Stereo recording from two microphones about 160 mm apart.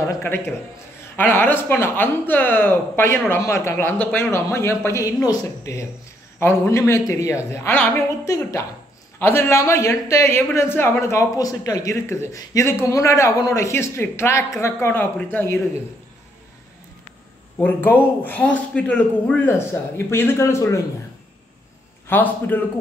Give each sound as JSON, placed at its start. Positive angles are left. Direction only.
{"t": 0.0, "sound": "a man's voice", "side_deg": 15}
{"t": 17.6, "sound": "a man's voice", "side_deg": 10}
{"t": 22.0, "sound": "a man's voice", "side_deg": 10}